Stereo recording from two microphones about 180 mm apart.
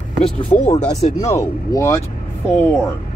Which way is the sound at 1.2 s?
15° left (ahead or behind).